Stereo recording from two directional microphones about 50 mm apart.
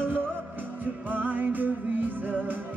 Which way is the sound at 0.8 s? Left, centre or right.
Right.